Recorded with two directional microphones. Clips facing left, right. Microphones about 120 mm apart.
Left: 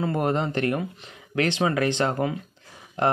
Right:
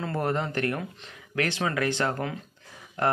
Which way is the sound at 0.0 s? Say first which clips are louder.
Left 4 dB; 20° left (ahead or behind).